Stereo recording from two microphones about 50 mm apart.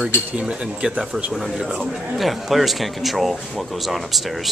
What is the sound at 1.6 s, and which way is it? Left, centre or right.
Speech, centre.